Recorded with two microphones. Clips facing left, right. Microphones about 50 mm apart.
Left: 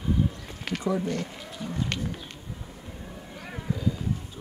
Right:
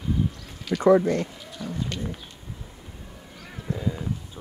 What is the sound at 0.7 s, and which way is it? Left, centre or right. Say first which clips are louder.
Speech: right 10 dB; right.